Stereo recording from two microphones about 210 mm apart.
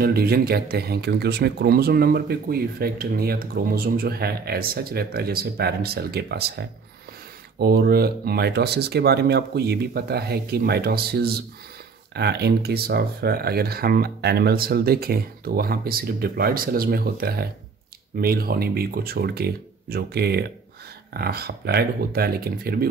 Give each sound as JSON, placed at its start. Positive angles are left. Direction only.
{"t": 0.0, "sound": "speech", "side_deg": -45}